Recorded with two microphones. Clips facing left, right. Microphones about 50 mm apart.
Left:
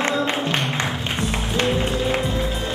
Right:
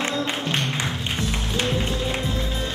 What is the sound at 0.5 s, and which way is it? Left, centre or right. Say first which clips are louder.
Music: left 2 dB; centre.